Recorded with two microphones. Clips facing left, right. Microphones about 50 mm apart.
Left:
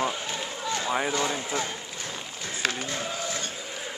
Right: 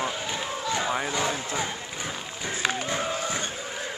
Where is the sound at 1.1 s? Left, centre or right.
Centre.